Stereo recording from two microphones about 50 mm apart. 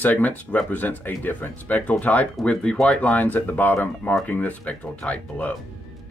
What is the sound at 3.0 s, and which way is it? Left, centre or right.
Speech, left.